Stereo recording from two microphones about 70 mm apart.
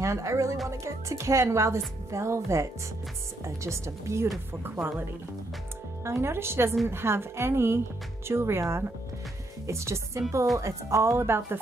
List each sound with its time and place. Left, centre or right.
0.0 s speech: right
4.6 s speech: right
6.0 s a woman's voice: right